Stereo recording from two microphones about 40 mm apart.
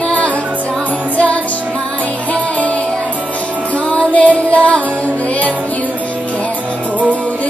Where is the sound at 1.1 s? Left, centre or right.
Left.